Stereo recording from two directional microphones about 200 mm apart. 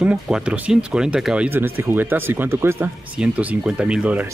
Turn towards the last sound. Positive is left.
turn(degrees=-5)  # may be behind; listen again after turning